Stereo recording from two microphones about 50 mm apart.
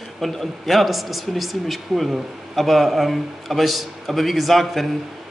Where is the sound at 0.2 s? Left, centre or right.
Centre.